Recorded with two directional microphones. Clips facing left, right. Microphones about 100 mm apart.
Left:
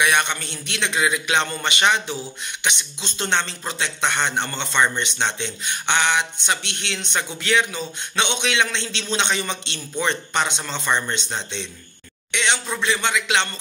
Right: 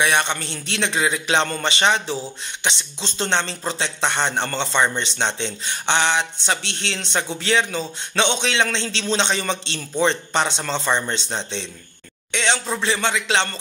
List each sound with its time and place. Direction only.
0.0 s speech: 30° right (ahead or behind)